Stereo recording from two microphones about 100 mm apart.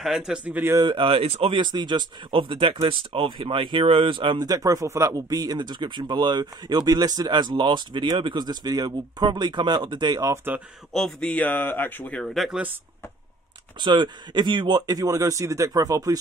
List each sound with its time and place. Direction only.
0.0 s speech: 5° right (ahead or behind)
0.5 s speech: 20° right (ahead or behind)
0.9 s speech: 65° right (ahead or behind)
1.5 s speech: 50° right (ahead or behind)
11.1 s speech: 15° left (ahead or behind)
12.2 s speech: centre (ahead or behind)
13.7 s speech: 50° right (ahead or behind)